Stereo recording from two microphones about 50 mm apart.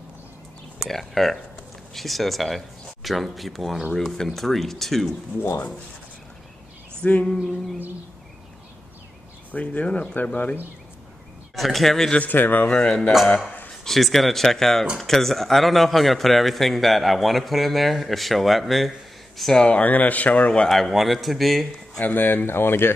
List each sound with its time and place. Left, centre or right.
0.8 s a man's voice: centre
7.0 s a sound: left
9.5 s speech: left
11.5 s a man's voice: centre
12.2 s speech: left
12.6 s speech: centre
13.8 s a man's voice: centre
19.8 s speech: left
20.6 s a man's voice: centre
22.0 s speech: left